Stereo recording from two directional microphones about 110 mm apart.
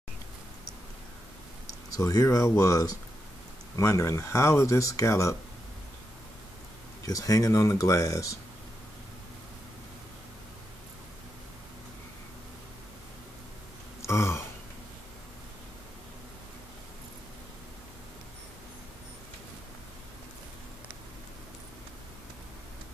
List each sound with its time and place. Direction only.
1.9 s speech: 30° left (ahead or behind)
7.1 s speech: 30° left (ahead or behind)
14.0 s throat clearing: 25° left (ahead or behind)